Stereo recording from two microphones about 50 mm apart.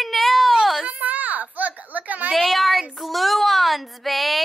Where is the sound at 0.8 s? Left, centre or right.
Right.